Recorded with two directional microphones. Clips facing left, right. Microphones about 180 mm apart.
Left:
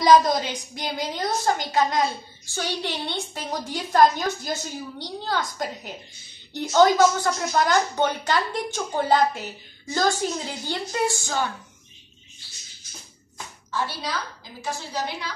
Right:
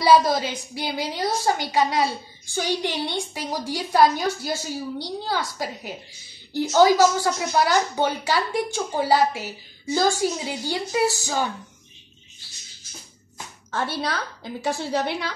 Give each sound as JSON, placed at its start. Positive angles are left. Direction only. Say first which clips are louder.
{"t": 0.0, "sound": "a woman's voice", "louder": "even", "side_deg": -5}
{"t": 13.7, "sound": "a woman's voice", "louder": "right 3 dB", "side_deg": -55}